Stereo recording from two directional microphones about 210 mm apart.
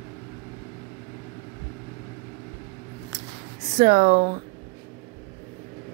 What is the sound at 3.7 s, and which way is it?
Speech, 35° right (ahead or behind).